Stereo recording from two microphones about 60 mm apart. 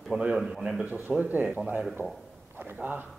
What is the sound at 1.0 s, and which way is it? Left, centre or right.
A man's voice, right.